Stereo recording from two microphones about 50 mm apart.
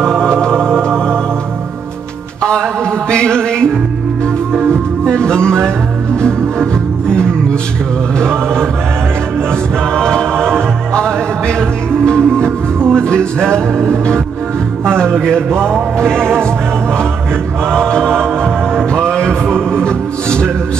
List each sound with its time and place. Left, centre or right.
0.0 s music: centre
3.1 s music: centre
8.2 s chant: centre
9.9 s choir: centre
11.0 s music: centre
14.9 s music: centre
17.6 s music: centre
18.9 s a sound: centre
19.7 s music: centre